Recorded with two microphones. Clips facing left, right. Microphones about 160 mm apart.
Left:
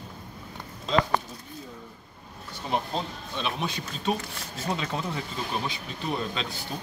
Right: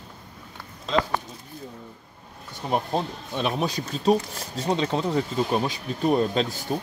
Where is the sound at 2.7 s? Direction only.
50° right (ahead or behind).